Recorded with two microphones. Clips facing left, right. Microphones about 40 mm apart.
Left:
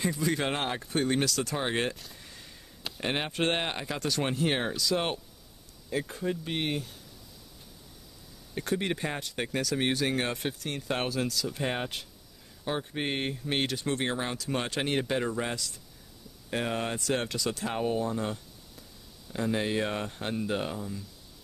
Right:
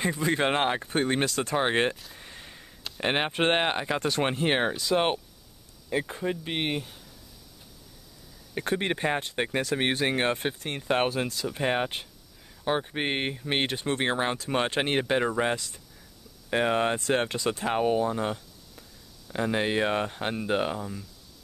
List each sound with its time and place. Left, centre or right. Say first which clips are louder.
0.0 s speech: right 3 dB; right
2.1 s a sound: right 4 dB; right
3.0 s speech: right 4 dB; right
8.5 s speech: right 2 dB; right